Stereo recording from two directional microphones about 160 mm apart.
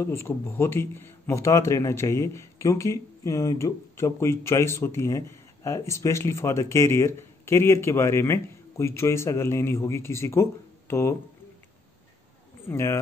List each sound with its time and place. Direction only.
0.0 s a man's voice: 15° left (ahead or behind)
12.6 s a man's voice: 15° left (ahead or behind)